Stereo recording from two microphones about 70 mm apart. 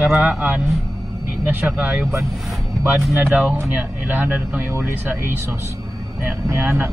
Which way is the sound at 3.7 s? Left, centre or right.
Centre.